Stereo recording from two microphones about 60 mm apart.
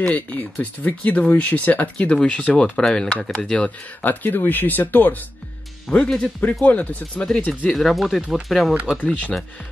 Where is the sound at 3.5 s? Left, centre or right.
Left.